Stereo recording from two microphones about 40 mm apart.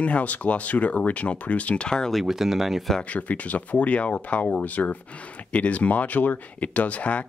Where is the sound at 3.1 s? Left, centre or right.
Left.